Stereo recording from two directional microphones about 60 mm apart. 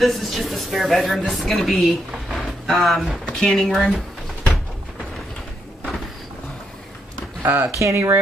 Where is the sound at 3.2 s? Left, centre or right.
Centre.